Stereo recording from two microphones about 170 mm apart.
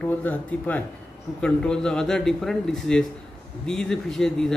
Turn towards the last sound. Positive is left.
turn(degrees=5)  # may be behind; listen again after turning